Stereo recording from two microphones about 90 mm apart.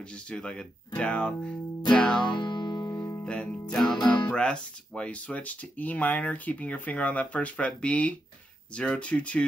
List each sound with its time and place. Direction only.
0.0 s speech: 10° left (ahead or behind)
2.3 s music: 55° left (ahead or behind)
2.9 s music: 35° left (ahead or behind)
3.3 s speech: 10° left (ahead or behind)